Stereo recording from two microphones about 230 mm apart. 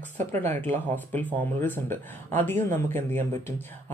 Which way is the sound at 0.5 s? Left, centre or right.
Centre.